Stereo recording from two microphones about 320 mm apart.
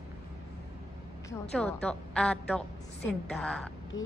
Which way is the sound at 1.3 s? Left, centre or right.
Centre.